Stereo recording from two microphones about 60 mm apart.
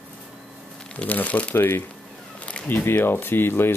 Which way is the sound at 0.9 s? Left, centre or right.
Left.